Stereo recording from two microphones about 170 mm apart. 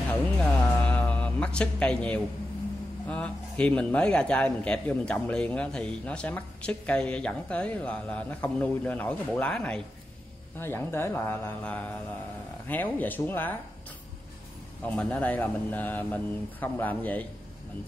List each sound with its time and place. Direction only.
0.1 s music: 10° left (ahead or behind)
3.1 s a man's voice: 5° left (ahead or behind)
14.9 s a man's voice: 10° left (ahead or behind)